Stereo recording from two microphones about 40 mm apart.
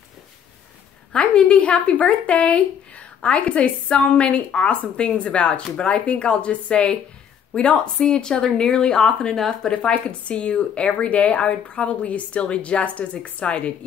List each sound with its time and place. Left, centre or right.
1.1 s a woman's voice: left